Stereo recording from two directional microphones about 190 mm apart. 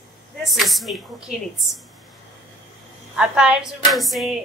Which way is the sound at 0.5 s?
Centre (ahead or behind).